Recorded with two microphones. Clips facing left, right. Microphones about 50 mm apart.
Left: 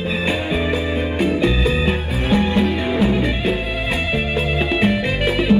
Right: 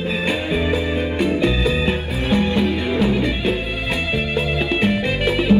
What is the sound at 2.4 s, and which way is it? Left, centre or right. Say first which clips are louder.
Music: left 1 dB; centre.